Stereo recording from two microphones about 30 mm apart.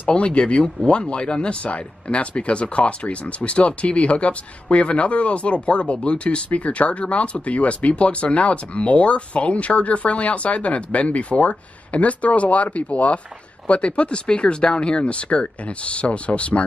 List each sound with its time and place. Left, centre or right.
0.1 s speech: left